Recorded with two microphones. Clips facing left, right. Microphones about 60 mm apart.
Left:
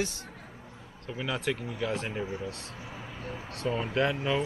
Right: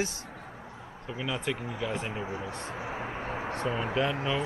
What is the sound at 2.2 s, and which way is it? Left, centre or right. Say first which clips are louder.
Speech: left 1 dB; right.